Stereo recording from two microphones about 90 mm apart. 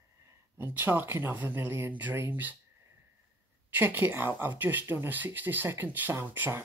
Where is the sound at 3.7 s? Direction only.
20° right (ahead or behind).